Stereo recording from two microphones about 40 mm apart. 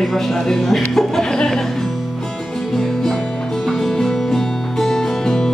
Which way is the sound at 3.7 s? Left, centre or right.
Centre.